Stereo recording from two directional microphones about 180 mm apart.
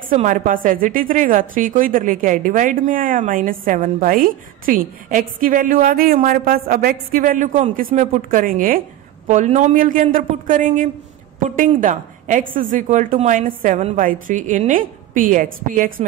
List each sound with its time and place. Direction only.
0.1 s a woman's voice: 40° right (ahead or behind)